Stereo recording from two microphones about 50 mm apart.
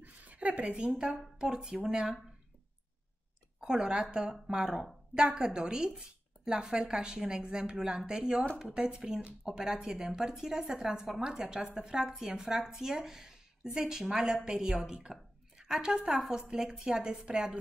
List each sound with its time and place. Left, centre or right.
0.0 s a sound: right
1.4 s a woman's voice: centre
3.6 s a woman's voice: centre